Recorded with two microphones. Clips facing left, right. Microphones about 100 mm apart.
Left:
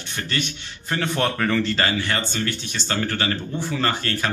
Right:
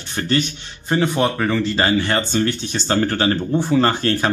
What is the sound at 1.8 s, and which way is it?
Speech, 30° right (ahead or behind).